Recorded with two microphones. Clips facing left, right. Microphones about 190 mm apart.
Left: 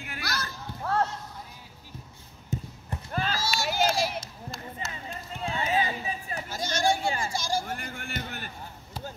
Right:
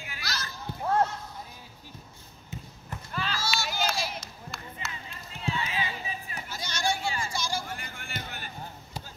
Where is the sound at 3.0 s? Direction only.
45° left (ahead or behind).